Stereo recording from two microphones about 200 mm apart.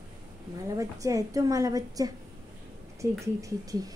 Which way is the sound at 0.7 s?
15° right (ahead or behind).